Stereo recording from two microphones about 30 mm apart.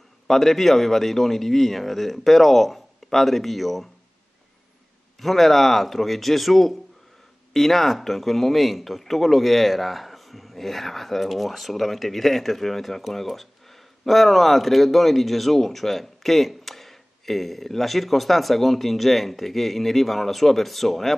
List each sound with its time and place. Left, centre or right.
0.3 s a man's voice: centre
5.2 s a man's voice: centre